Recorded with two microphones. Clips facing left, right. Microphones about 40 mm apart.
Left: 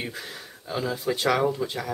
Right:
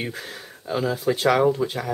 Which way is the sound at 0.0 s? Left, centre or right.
Centre.